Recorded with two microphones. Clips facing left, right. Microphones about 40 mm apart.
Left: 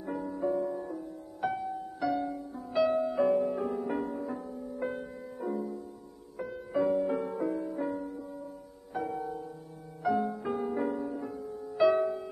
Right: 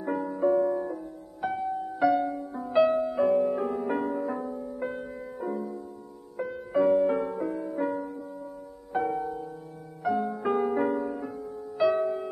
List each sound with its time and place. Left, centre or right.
0.0 s music: right
1.4 s music: centre
2.2 s music: right
2.8 s music: centre
3.4 s music: centre
4.7 s music: centre
7.3 s music: centre
10.0 s music: centre
10.3 s music: right
11.7 s music: centre